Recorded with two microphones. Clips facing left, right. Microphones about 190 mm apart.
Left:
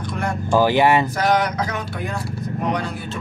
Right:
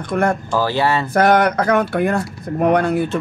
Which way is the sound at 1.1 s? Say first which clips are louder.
Right 6 dB; 55° right (ahead or behind).